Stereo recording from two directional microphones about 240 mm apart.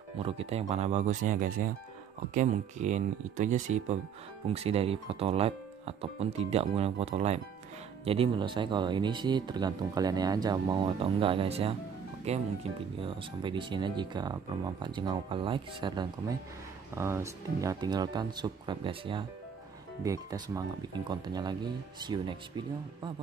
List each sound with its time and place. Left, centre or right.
0.2 s speech: right